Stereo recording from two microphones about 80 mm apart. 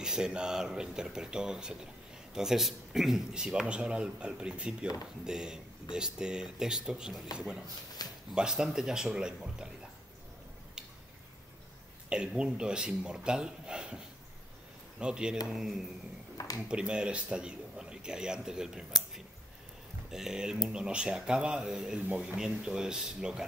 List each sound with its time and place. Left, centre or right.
0.0 s speech: centre
8.0 s a sound: left
8.4 s speech: centre
12.1 s speech: centre